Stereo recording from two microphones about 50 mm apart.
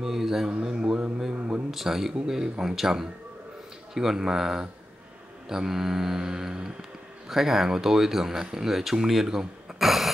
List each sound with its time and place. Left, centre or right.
0.0 s speech: centre
0.5 s speech: centre